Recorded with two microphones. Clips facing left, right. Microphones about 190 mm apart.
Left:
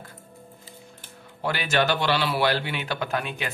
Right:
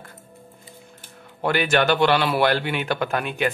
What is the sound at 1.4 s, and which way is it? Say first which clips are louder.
Speech: right 4 dB; 55° right (ahead or behind).